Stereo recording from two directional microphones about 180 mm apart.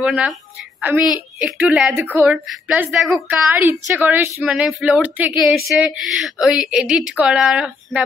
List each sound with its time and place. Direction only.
0.0 s a woman's voice: 5° right (ahead or behind)